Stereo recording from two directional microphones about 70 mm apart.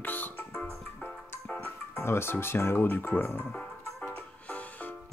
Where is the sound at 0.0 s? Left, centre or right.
Left.